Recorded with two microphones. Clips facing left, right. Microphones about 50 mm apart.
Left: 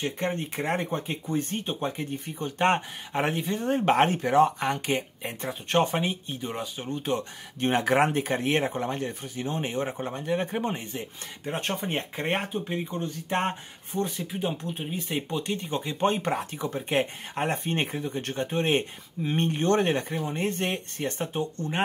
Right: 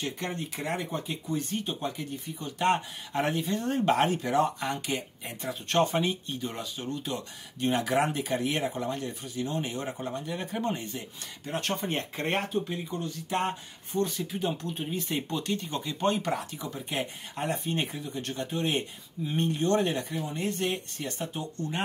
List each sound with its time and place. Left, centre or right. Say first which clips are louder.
0.0 s speech: left 4 dB; left
3.1 s speech: left 1 dB; left
5.5 s speech: left 1 dB; left
7.0 s speech: left 6 dB; left
14.0 s speech: left 1 dB; centre; by 21.8 s left